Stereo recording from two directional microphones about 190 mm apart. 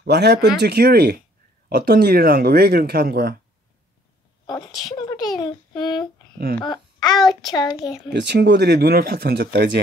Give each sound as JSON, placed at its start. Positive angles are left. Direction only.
{"t": 0.0, "sound": "speech", "side_deg": -60}
{"t": 4.5, "sound": "a woman's voice", "side_deg": 20}
{"t": 8.1, "sound": "speech", "side_deg": -65}